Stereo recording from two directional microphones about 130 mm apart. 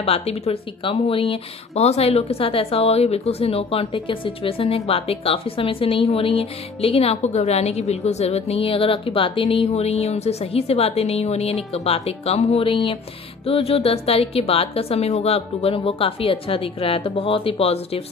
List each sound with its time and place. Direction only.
0.0 s speech: 50° left (ahead or behind)